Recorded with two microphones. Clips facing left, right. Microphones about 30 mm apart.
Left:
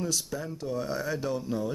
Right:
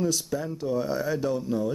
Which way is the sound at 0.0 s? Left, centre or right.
Centre.